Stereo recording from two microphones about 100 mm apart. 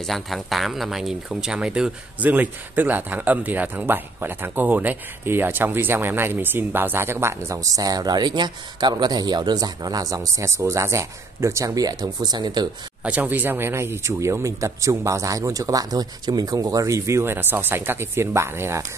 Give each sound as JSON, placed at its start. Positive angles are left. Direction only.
{"t": 0.0, "sound": "speech", "side_deg": 0}
{"t": 13.0, "sound": "speech", "side_deg": -15}